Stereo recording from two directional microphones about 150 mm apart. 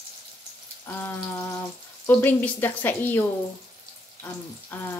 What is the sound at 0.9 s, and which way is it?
Speech, 15° left (ahead or behind).